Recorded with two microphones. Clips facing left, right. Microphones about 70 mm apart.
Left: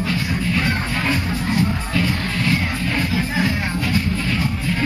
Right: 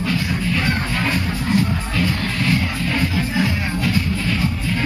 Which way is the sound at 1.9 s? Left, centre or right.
Centre.